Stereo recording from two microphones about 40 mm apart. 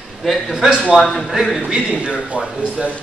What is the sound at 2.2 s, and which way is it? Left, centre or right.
Speech, right.